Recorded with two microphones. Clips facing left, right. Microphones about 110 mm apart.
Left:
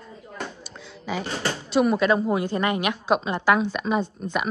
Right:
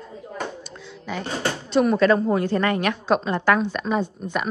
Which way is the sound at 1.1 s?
5° left (ahead or behind).